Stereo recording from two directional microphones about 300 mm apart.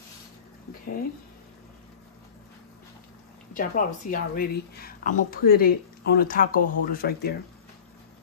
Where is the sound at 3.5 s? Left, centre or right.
Left.